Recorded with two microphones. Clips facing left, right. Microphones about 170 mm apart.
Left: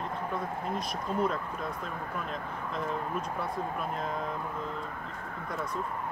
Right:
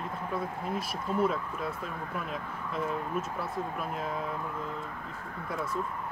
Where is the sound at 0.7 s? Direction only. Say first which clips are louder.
Right 2 dB; 5° right (ahead or behind).